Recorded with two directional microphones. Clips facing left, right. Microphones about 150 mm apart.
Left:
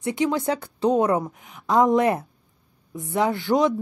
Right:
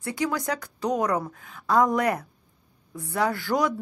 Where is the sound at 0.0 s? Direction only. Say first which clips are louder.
Left 5 dB; 25° left (ahead or behind).